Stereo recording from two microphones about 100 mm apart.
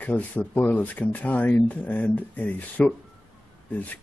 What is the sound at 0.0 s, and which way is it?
Speech, 15° left (ahead or behind).